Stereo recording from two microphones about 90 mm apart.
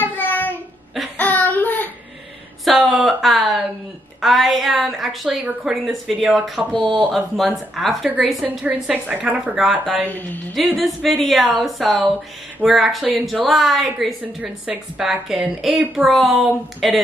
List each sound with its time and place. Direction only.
0.0 s child singing: 20° left (ahead or behind)
2.6 s a sound: centre (ahead or behind)
4.2 s a woman's voice: centre (ahead or behind)
6.7 s speech: 70° right (ahead or behind)
7.3 s a woman's voice: centre (ahead or behind)
8.9 s a woman's voice: 15° right (ahead or behind)
9.6 s a woman's voice: 5° right (ahead or behind)
10.0 s a woman's voice: 20° left (ahead or behind)
10.5 s a woman's voice: centre (ahead or behind)